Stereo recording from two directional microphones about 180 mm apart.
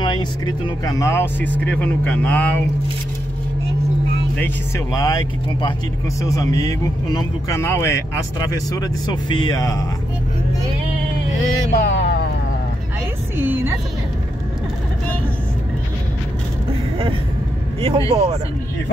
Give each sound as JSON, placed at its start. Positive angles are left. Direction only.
{"t": 0.0, "sound": "speech", "side_deg": 25}
{"t": 4.4, "sound": "speech", "side_deg": 15}
{"t": 11.7, "sound": "vehicle", "side_deg": 80}
{"t": 13.4, "sound": "music", "side_deg": -10}
{"t": 17.8, "sound": "speech", "side_deg": -30}